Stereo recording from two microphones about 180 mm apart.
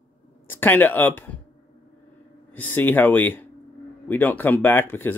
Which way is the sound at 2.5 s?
10° left (ahead or behind).